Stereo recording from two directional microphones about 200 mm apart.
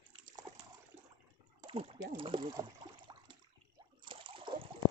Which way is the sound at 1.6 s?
25° right (ahead or behind).